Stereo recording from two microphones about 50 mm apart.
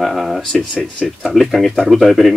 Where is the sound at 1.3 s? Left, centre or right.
Centre.